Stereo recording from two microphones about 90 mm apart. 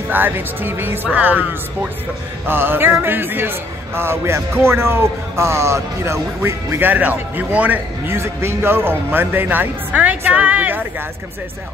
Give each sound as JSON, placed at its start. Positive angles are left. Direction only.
{"t": 0.1, "sound": "speech", "side_deg": -20}